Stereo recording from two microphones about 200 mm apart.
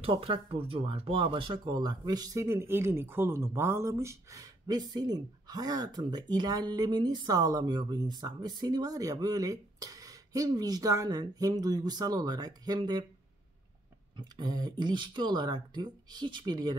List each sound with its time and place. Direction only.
0.0 s speech: 25° right (ahead or behind)
14.1 s speech: 20° right (ahead or behind)